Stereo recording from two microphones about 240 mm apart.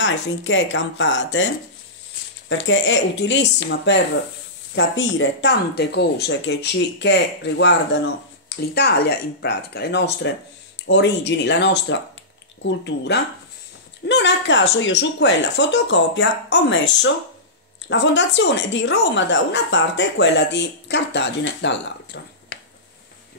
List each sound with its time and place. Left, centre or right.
0.0 s a woman's voice: left
2.5 s a woman's voice: left
17.8 s a woman's voice: left